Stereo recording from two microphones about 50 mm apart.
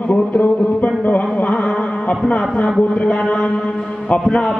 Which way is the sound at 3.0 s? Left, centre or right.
Left.